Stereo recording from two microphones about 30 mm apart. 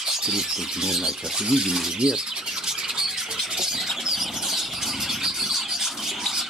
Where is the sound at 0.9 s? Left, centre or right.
Centre.